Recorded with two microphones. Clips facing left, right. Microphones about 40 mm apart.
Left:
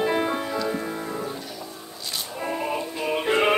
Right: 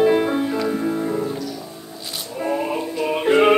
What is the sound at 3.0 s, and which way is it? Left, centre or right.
Music, centre.